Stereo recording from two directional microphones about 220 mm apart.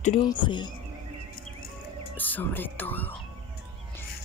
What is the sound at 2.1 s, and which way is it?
Speech, 10° left (ahead or behind).